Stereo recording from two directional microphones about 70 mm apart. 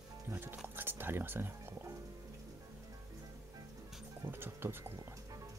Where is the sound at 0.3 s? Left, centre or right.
Right.